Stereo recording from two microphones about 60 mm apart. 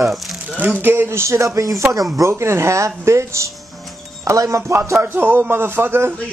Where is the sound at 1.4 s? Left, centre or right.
Right.